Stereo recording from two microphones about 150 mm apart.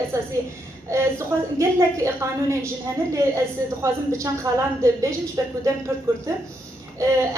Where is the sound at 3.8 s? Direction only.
20° right (ahead or behind).